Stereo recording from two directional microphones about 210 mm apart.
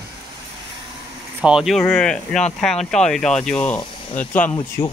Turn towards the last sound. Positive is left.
turn(degrees=35)  # may be behind; listen again after turning